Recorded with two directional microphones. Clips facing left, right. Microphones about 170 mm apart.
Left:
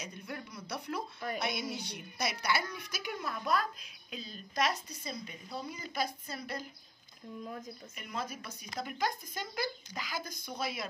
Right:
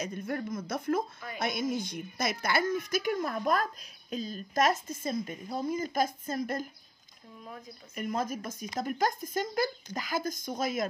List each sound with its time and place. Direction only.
0.0 s a woman's voice: 50° right (ahead or behind)
7.9 s a woman's voice: 45° right (ahead or behind)